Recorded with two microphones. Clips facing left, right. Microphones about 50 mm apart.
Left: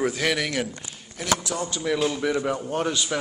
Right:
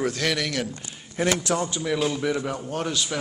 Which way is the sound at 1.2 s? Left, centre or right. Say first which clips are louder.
Right 3 dB; right.